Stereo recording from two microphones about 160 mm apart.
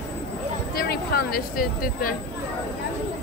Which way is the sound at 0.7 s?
75° left (ahead or behind).